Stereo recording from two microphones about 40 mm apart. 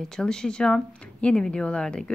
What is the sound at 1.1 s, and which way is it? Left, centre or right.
Speech, left.